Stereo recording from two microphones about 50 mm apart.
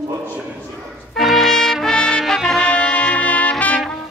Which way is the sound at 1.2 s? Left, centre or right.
Centre.